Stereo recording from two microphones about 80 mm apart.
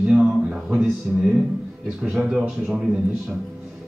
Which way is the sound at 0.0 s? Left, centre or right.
Centre.